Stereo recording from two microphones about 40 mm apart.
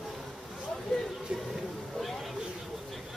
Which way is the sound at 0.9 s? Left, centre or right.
Centre.